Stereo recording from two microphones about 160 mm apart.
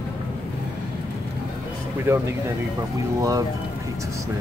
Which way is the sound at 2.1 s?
15° right (ahead or behind).